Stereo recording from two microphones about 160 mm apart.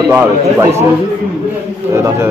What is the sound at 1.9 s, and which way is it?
Speech, 20° right (ahead or behind).